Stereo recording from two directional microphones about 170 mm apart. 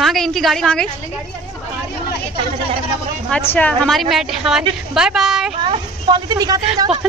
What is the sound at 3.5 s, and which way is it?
A woman's voice, 10° left (ahead or behind).